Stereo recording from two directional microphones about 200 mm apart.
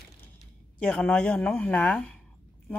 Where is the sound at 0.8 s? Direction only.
5° left (ahead or behind).